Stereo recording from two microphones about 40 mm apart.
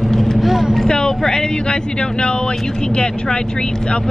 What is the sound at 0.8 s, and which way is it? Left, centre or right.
Speech, left.